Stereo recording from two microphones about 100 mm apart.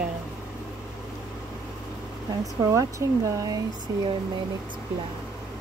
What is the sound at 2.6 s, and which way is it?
Speech, 35° right (ahead or behind).